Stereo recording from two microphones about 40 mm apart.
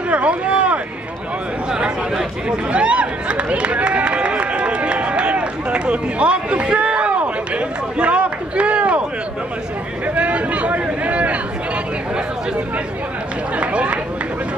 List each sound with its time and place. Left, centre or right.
0.1 s a sound: right
10.0 s speech: right
13.6 s speech: right